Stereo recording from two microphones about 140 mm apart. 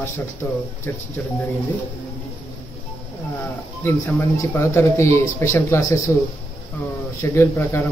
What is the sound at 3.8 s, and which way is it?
Speech, 20° left (ahead or behind).